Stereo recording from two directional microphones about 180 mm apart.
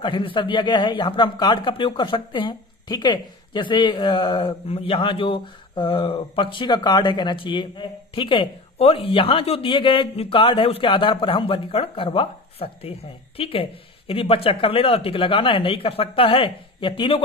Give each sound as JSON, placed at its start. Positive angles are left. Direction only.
{"t": 0.0, "sound": "a man's voice", "side_deg": 30}